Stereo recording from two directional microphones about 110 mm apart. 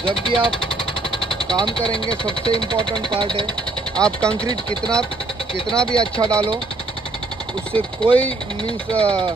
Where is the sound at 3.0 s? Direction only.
50° right (ahead or behind).